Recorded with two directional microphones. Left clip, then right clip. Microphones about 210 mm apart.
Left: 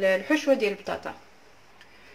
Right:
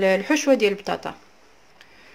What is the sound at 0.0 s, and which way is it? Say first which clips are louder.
Speech: right 3 dB; 55° right (ahead or behind).